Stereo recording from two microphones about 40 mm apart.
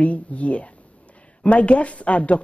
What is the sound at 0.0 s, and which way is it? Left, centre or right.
Speech, left.